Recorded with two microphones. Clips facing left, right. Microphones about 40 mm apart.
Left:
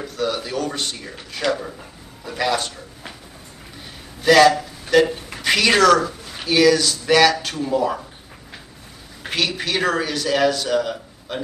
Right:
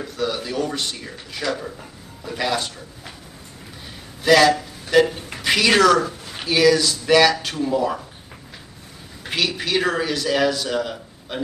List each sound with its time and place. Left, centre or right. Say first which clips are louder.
0.0 s a man's voice: left 1 dB; centre
4.2 s a man's voice: left 2 dB; centre
9.3 s a man's voice: even; centre